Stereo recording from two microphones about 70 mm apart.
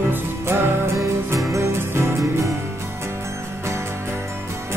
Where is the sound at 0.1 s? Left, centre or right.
Right.